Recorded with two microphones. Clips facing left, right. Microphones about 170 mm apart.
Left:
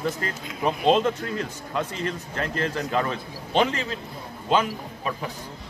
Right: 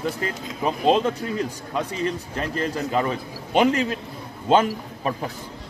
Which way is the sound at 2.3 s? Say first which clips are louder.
Left 1 dB; 10° right (ahead or behind).